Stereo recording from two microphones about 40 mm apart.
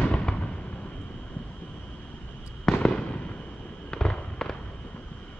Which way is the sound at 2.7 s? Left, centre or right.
Centre.